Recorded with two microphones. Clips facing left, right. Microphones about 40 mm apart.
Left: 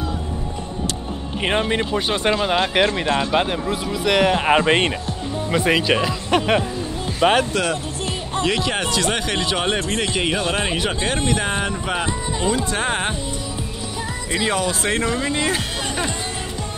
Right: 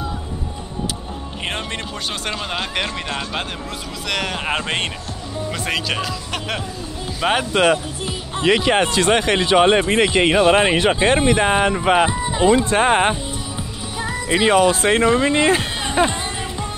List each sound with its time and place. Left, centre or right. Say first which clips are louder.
1.4 s speech: left 7 dB; centre
7.2 s speech: left 3 dB; centre
7.5 s speech: right 5 dB; right
11.7 s speech: right 8 dB; right
12.1 s speech: right 6 dB; right
14.3 s speech: right 7 dB; right